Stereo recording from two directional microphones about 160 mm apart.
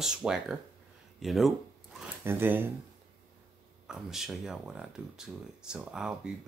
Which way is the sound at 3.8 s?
5° right (ahead or behind).